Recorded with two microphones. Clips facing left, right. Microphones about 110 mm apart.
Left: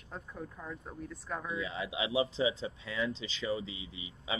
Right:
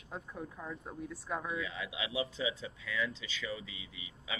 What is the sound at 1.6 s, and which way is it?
Speech, 25° left (ahead or behind).